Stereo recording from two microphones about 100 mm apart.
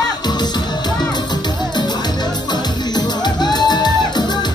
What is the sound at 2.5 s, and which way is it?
Music, 45° left (ahead or behind).